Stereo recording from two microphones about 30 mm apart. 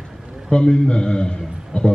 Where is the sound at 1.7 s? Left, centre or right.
Left.